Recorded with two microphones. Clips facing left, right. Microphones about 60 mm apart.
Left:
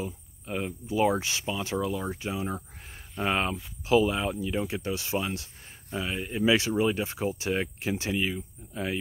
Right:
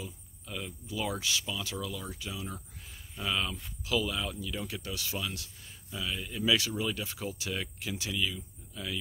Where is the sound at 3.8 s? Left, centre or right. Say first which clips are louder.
Left 8 dB; left.